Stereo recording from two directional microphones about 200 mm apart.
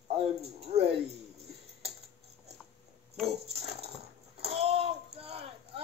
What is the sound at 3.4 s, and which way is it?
Dog, 30° right (ahead or behind).